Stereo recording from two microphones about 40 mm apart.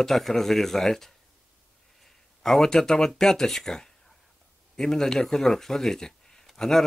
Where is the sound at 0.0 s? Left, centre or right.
Centre.